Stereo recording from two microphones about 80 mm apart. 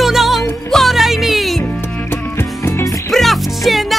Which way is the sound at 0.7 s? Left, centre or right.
Centre.